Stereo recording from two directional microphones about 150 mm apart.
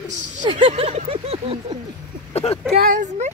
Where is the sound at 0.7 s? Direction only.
45° right (ahead or behind).